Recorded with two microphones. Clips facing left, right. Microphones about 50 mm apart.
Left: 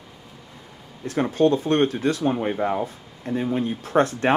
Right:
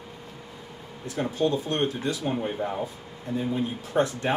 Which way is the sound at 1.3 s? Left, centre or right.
Left.